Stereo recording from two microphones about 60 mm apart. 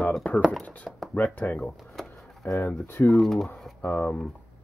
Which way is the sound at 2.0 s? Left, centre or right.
Centre.